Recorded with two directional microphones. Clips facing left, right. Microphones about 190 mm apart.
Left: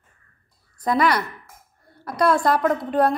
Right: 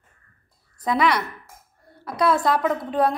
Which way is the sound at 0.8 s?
Centre (ahead or behind).